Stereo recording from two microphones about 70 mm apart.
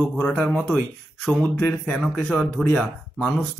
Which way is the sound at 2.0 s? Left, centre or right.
Centre.